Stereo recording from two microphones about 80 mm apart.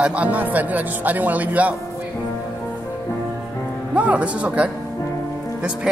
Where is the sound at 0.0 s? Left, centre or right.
Centre.